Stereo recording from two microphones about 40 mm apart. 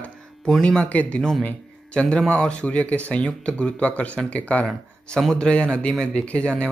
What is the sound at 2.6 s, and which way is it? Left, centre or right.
Speech, left.